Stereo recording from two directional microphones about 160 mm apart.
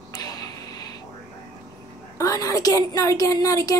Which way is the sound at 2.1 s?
20° left (ahead or behind).